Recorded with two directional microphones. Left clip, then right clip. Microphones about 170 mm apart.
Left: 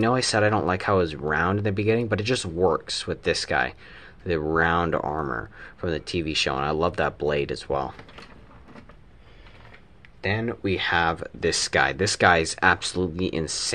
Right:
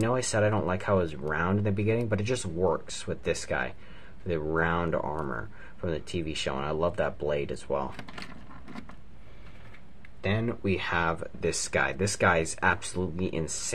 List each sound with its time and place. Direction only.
0.0 s speech: 20° left (ahead or behind)
10.2 s speech: 15° left (ahead or behind)